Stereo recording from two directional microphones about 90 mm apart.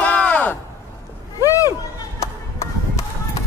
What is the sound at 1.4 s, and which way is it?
Hubbub, 40° left (ahead or behind).